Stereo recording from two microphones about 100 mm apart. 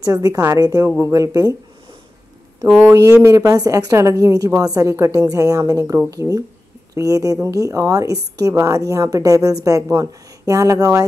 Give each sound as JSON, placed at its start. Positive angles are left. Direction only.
{"t": 0.0, "sound": "a woman's voice", "side_deg": -40}
{"t": 2.9, "sound": "a woman's voice", "side_deg": -25}